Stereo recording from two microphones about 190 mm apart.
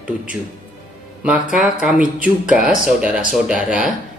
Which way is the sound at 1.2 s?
5° right (ahead or behind).